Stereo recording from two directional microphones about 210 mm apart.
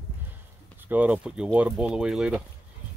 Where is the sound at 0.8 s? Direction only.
10° right (ahead or behind).